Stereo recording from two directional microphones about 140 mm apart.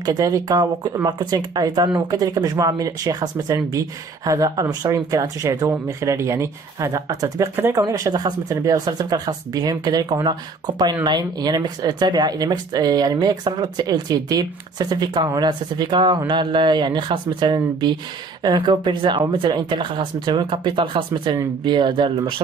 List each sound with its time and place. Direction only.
0.0 s speech: 25° right (ahead or behind)